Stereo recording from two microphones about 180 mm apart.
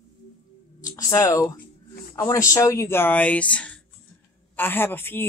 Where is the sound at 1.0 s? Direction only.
20° left (ahead or behind).